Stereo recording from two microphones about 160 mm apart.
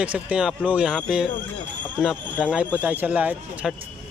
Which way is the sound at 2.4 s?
5° right (ahead or behind).